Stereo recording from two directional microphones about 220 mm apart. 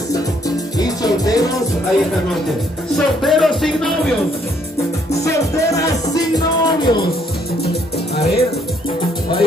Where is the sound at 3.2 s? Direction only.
Centre (ahead or behind).